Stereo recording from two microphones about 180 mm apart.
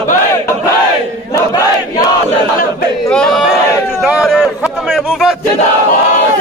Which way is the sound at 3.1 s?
5° left (ahead or behind).